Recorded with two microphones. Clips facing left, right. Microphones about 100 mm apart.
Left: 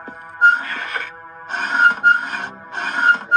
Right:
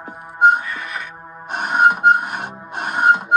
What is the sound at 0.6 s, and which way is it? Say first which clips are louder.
Music: left 1 dB; 65° left (ahead or behind).